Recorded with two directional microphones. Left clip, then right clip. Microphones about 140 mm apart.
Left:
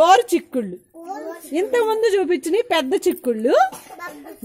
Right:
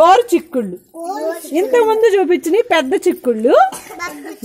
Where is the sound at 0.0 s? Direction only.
20° left (ahead or behind).